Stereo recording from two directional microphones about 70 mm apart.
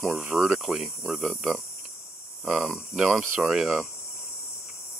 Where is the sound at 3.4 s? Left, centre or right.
Centre.